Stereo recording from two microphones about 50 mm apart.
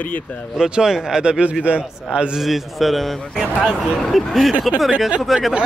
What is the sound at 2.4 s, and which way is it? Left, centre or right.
A man's voice, centre.